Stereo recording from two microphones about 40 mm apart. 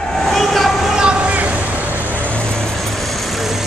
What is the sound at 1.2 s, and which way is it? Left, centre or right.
Vehicle, right.